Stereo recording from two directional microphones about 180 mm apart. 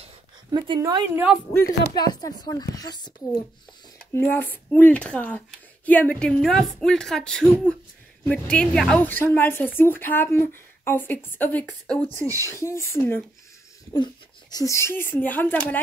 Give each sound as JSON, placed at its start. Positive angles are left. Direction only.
{"t": 0.5, "sound": "speech", "side_deg": -25}
{"t": 1.6, "sound": "speech", "side_deg": 65}
{"t": 2.0, "sound": "a woman's voice", "side_deg": 20}
{"t": 4.1, "sound": "a woman's voice", "side_deg": 10}
{"t": 12.2, "sound": "speech", "side_deg": -15}
{"t": 12.4, "sound": "a woman's voice", "side_deg": 15}